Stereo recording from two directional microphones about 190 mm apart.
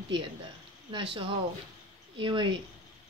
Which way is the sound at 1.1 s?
25° right (ahead or behind).